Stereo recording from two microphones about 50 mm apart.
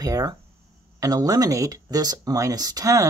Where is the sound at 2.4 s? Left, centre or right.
Right.